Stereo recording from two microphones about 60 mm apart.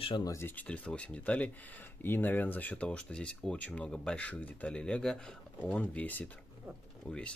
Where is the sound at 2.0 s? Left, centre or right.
Left.